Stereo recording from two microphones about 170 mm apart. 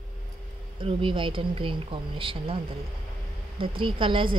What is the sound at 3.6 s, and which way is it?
Speech, 30° right (ahead or behind).